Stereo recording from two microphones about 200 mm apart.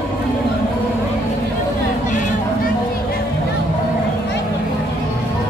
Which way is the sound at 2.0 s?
40° left (ahead or behind).